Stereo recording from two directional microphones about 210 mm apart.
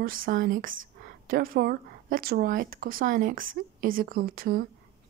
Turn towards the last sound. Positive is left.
turn(degrees=-45)  # may be behind; listen again after turning